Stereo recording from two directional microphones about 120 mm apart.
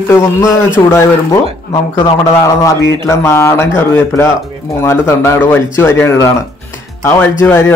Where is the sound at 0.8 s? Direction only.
15° left (ahead or behind).